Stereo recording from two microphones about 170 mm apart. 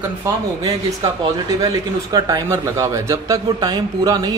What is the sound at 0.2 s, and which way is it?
Speech, 20° right (ahead or behind).